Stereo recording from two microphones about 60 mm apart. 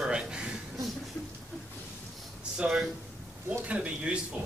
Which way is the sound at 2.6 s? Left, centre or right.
Centre.